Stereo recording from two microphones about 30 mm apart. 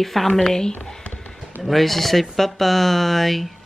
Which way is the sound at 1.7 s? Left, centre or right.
Centre.